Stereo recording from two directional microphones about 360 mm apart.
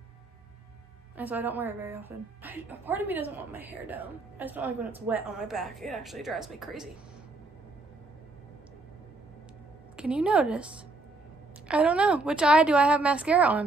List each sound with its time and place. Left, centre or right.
1.1 s a woman's voice: centre
9.9 s a woman's voice: centre